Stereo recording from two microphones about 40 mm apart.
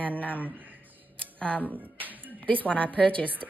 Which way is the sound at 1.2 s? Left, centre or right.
Left.